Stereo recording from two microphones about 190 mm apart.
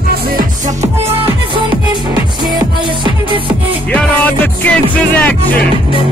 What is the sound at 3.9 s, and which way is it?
Music, 5° left (ahead or behind).